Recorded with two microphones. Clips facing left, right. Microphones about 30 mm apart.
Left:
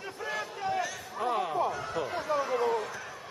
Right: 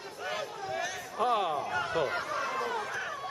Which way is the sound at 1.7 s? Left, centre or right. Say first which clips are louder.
Right 3 dB; right.